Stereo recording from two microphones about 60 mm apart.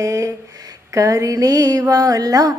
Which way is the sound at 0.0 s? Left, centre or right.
Right.